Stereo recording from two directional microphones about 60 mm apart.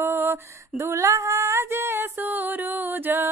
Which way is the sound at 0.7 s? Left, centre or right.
Right.